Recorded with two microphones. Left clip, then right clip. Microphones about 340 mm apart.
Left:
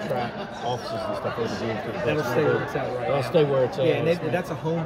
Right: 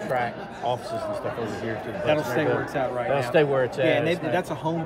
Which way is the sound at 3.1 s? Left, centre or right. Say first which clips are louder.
Even; right.